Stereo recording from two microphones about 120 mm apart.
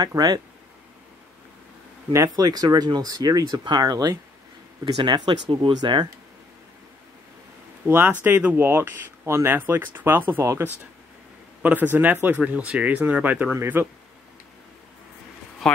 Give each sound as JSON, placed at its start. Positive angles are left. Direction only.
{"t": 0.0, "sound": "speech", "side_deg": -30}
{"t": 2.1, "sound": "speech", "side_deg": -30}
{"t": 7.8, "sound": "speech", "side_deg": -15}
{"t": 15.6, "sound": "a sound", "side_deg": 5}